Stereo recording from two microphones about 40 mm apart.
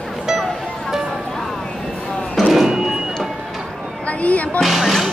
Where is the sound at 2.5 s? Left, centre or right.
Centre.